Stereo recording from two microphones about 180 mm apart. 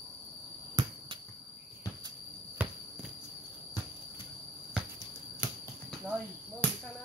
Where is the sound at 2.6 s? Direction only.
10° right (ahead or behind).